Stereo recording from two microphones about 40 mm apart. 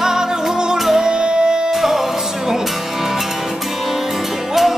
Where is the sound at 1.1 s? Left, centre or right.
Right.